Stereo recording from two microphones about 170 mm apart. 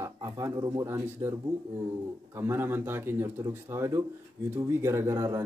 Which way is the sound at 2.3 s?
15° right (ahead or behind).